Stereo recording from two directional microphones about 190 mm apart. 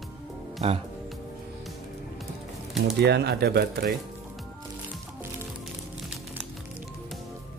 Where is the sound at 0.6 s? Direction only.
35° right (ahead or behind).